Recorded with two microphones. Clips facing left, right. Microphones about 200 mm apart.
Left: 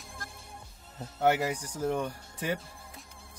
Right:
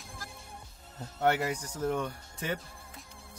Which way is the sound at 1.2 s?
5° left (ahead or behind).